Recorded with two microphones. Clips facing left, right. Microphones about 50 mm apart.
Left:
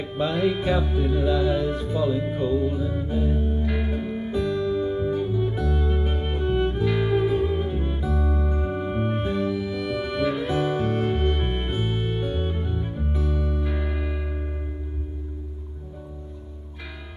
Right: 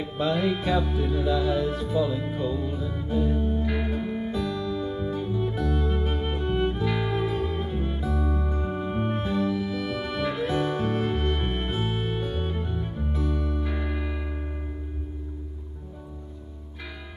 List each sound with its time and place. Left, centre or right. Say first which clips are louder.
0.0 s music: left 2 dB; centre
4.3 s music: left 4 dB; centre
8.5 s music: left 2 dB; centre
9.5 s music: left 1 dB; centre